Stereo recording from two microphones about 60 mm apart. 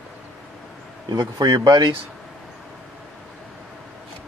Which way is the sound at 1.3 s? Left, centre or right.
Right.